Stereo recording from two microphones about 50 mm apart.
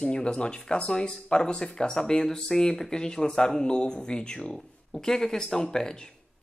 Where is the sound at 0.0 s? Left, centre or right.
Centre.